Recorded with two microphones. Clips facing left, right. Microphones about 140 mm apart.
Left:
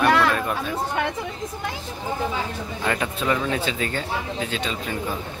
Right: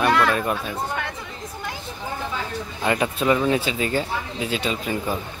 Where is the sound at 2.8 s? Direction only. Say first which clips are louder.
Right 4 dB; 15° right (ahead or behind).